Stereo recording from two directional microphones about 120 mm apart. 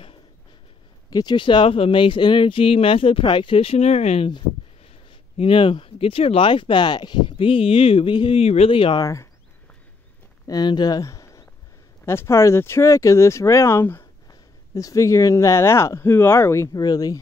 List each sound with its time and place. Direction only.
1.1 s speech: 40° left (ahead or behind); by 4.3 s 60° left (ahead or behind)
5.4 s speech: 45° left (ahead or behind)
8.4 s speech: 60° left (ahead or behind)
9.0 s speech: 25° left (ahead or behind)
10.4 s speech: 35° left (ahead or behind)